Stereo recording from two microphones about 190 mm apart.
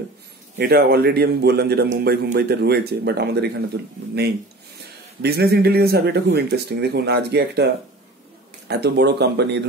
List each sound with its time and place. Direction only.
0.6 s speech: 55° right (ahead or behind)
5.2 s speech: 55° right (ahead or behind)